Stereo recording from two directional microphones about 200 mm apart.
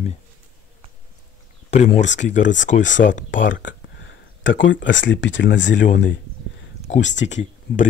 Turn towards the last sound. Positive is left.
turn(degrees=35)  # may be behind; listen again after turning